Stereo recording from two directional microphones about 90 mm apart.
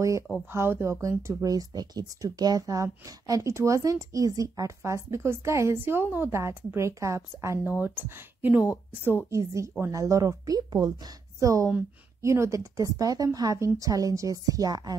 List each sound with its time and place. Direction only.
0.5 s speech: 25° right (ahead or behind)
1.5 s speech: 45° right (ahead or behind)
7.8 s speech: 20° right (ahead or behind)
9.4 s speech: 35° right (ahead or behind)